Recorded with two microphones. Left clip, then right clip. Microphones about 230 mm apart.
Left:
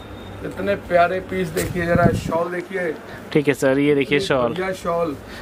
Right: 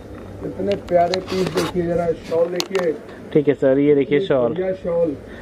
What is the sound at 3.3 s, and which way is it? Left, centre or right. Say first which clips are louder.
Speech: right 2 dB; left.